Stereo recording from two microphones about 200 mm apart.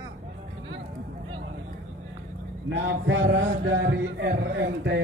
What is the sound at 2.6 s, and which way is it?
A man's voice, 70° right (ahead or behind).